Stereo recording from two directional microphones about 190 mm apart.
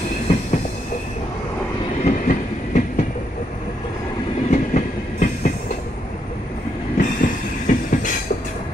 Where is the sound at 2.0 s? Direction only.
40° left (ahead or behind).